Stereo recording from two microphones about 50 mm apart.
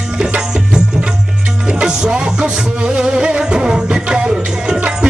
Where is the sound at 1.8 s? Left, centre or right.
Centre.